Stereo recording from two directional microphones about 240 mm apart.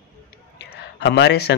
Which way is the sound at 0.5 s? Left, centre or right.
Left.